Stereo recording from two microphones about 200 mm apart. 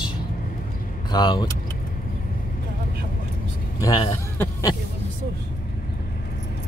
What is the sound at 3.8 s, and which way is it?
Speech, 20° left (ahead or behind).